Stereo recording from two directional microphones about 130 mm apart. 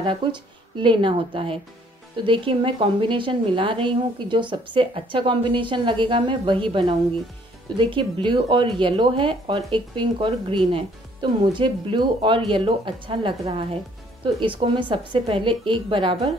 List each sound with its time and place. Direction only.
0.0 s a woman's voice: 40° right (ahead or behind)